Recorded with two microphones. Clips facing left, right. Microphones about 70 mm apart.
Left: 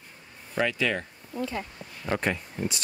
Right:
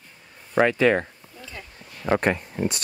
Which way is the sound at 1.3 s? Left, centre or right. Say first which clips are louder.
Left 12 dB; left.